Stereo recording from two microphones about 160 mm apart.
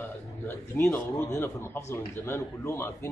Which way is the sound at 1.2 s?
15° left (ahead or behind).